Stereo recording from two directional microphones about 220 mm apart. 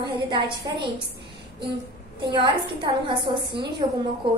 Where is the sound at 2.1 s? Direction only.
20° right (ahead or behind).